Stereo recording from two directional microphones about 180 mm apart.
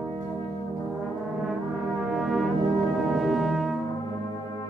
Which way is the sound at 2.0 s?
Centre (ahead or behind).